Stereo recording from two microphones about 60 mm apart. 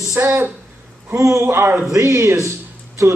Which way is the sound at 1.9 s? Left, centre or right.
Right.